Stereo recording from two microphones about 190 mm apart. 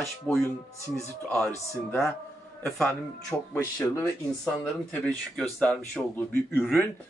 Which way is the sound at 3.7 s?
15° left (ahead or behind).